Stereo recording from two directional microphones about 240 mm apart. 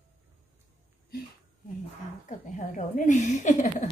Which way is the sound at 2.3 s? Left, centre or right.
Left.